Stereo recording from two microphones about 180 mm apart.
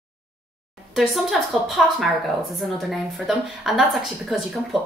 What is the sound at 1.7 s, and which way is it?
Speech, centre (ahead or behind).